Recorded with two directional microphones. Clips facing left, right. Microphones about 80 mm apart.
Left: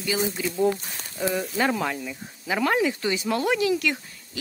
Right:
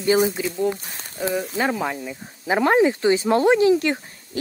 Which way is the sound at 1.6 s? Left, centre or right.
Centre.